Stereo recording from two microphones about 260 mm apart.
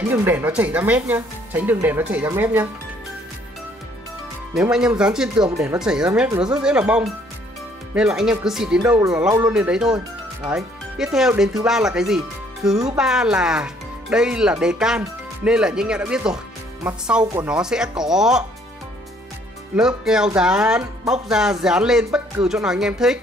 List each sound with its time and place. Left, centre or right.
0.1 s speech: centre
4.6 s speech: centre
19.7 s speech: centre